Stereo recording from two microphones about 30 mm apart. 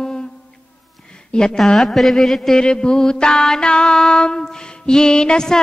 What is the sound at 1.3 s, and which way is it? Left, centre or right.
Speech, left.